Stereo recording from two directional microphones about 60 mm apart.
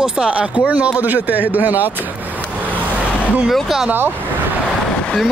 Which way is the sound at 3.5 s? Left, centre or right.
Centre.